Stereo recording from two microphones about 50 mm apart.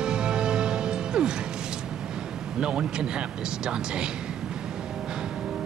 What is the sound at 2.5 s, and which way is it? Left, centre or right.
Speech, centre.